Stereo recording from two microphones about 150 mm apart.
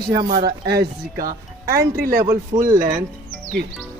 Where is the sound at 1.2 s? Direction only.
85° right.